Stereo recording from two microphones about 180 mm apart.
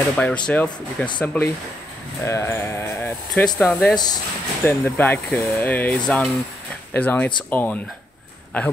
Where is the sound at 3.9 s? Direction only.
20° left (ahead or behind).